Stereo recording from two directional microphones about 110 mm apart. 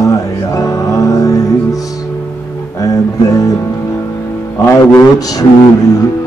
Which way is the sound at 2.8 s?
35° left (ahead or behind).